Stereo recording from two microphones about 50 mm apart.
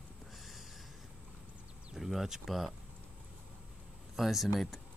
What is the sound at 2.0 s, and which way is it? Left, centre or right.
Speech, centre.